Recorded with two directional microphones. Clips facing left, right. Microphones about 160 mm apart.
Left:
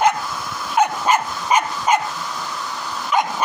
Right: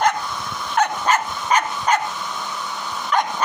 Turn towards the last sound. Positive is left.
turn(degrees=5)  # may be behind; listen again after turning